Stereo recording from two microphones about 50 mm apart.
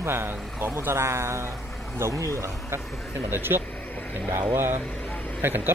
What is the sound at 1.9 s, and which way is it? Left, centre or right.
Speech, right.